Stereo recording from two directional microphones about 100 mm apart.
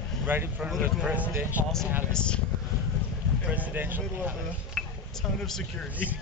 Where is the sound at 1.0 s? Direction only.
15° right (ahead or behind).